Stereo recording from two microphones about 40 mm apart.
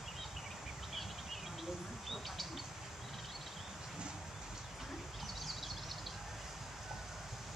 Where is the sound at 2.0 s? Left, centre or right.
Centre.